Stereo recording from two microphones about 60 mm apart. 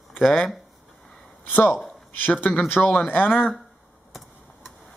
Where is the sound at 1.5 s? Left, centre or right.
Left.